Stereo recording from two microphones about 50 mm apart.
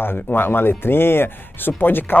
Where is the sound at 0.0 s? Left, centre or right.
Left.